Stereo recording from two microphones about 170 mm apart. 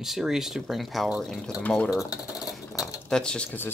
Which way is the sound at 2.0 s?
20° left (ahead or behind).